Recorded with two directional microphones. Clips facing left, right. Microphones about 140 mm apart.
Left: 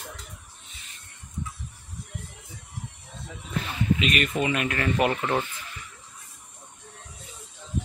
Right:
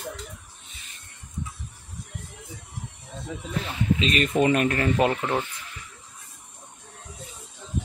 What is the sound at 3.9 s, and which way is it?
Speech, 30° right (ahead or behind).